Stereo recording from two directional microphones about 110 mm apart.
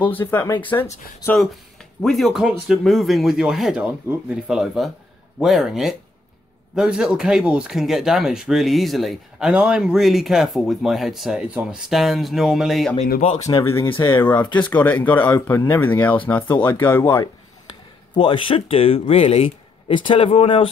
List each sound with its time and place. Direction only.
0.1 s speech: 20° left (ahead or behind)
2.0 s speech: 5° left (ahead or behind)
12.9 s speech: 90° left
13.9 s speech: 20° left (ahead or behind)
18.1 s speech: 50° left (ahead or behind)